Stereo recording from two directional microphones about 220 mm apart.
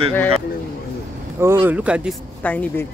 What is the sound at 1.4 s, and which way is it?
Speech, 10° right (ahead or behind).